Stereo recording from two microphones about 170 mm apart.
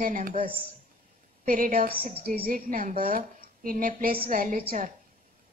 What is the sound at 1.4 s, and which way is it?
A woman's voice, 55° right (ahead or behind).